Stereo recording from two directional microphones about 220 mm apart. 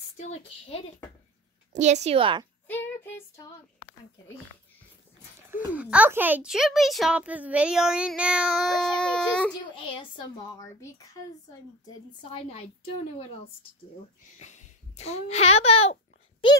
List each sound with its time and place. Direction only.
0.3 s a woman's voice: 25° left (ahead or behind)
1.7 s a woman's voice: 30° right (ahead or behind)
5.5 s speech: 5° right (ahead or behind)
10.5 s speech: 15° left (ahead or behind)
12.3 s a woman's voice: 30° left (ahead or behind)
14.4 s a child's voice: 30° left (ahead or behind)